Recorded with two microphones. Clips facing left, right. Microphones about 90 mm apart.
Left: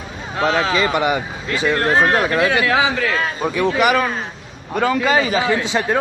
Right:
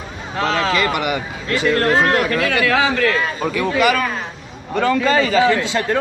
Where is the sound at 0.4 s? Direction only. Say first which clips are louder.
Left 1 dB; 10° left (ahead or behind).